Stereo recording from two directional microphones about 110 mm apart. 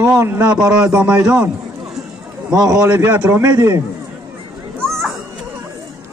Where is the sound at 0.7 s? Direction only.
10° right (ahead or behind).